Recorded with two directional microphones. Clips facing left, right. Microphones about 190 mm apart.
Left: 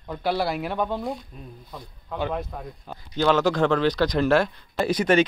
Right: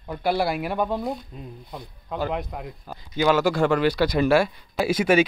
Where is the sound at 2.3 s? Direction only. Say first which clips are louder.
Right 1 dB; 15° right (ahead or behind).